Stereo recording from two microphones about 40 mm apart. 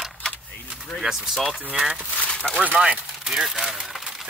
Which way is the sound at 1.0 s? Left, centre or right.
Centre.